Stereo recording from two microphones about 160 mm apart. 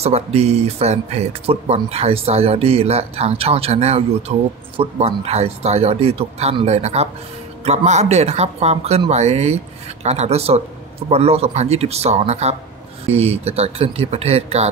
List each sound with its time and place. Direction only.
0.0 s speech: 40° right (ahead or behind)